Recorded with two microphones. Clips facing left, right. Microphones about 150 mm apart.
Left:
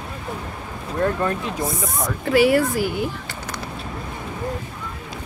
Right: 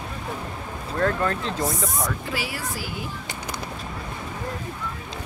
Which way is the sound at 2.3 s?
60° left (ahead or behind).